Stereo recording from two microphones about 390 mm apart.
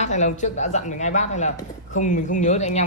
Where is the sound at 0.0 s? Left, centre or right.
Centre.